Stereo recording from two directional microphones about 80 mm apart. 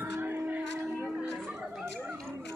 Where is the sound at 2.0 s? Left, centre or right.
Right.